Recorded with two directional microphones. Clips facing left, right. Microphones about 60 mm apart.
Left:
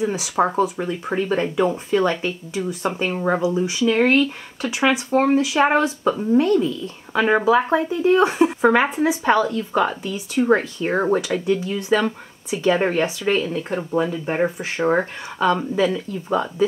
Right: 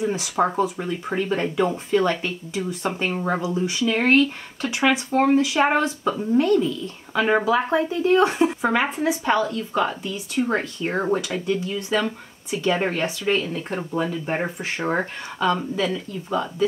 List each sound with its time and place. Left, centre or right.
0.0 s speech: centre
3.8 s speech: centre
4.6 s speech: centre
4.8 s speech: centre
5.4 s a woman's voice: centre
7.4 s a woman's voice: left
12.9 s a woman's voice: left
13.7 s speech: centre
15.4 s a woman's voice: centre